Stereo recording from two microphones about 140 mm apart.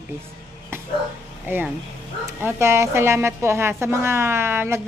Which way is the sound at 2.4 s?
20° right (ahead or behind).